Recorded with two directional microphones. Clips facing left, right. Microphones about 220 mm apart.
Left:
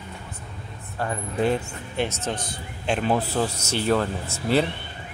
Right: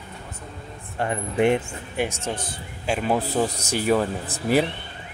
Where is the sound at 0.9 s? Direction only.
20° right (ahead or behind).